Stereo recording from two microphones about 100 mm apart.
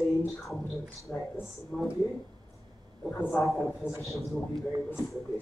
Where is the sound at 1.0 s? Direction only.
25° left (ahead or behind).